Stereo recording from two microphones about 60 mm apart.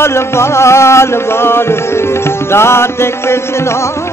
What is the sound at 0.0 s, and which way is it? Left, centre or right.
Music, left.